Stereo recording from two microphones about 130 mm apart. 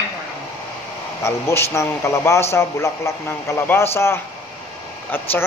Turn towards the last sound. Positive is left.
turn(degrees=15)  # may be behind; listen again after turning